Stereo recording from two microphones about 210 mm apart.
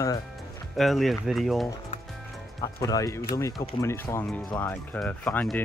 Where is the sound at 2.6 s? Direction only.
15° left (ahead or behind).